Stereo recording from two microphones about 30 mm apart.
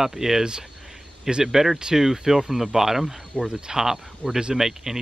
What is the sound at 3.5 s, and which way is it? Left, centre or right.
Cricket, right.